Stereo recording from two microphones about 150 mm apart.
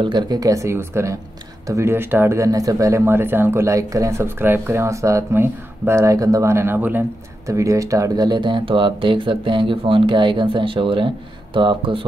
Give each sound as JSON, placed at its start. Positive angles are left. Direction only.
{"t": 0.0, "sound": "speech", "side_deg": -30}